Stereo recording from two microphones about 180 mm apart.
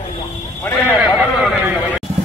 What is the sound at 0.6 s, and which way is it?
Horse, 10° left (ahead or behind).